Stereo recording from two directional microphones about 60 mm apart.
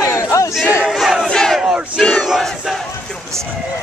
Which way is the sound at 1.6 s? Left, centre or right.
Centre.